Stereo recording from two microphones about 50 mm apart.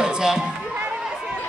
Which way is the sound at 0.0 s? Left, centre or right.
Centre.